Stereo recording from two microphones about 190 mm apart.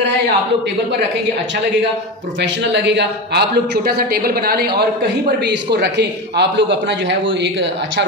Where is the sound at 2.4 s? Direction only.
65° right (ahead or behind).